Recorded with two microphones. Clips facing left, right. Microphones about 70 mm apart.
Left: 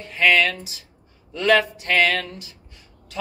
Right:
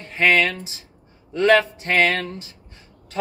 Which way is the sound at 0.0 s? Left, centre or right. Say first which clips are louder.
Even; right.